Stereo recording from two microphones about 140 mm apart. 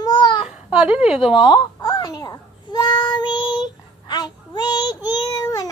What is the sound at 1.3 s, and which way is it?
Babbling, 35° left (ahead or behind).